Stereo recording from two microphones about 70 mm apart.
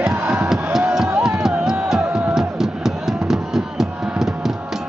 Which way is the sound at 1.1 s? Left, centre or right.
Centre.